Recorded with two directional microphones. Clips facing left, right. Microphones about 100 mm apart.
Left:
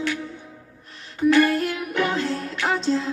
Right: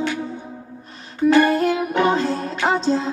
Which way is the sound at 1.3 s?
20° right (ahead or behind).